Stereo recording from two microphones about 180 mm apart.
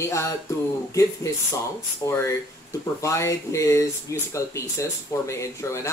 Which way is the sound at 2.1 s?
15° left (ahead or behind).